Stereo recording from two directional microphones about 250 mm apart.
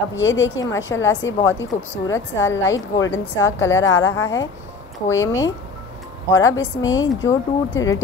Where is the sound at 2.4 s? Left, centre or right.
Centre.